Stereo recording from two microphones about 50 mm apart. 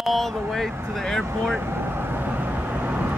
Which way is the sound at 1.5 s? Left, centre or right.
Right.